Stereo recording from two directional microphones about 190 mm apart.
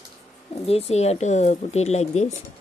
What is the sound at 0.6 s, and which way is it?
Speech, 30° left (ahead or behind).